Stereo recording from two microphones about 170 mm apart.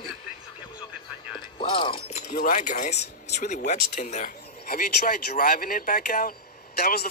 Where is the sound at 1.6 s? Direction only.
30° left (ahead or behind).